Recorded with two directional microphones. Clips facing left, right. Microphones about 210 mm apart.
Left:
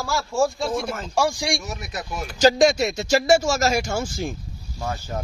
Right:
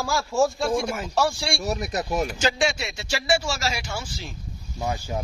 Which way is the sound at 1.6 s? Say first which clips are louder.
Right 6 dB; 35° right (ahead or behind).